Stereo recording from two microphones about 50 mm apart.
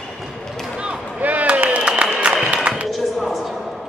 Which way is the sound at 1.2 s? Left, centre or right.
Right.